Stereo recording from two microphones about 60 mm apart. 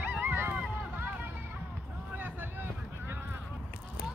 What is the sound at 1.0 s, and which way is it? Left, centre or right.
Run, right.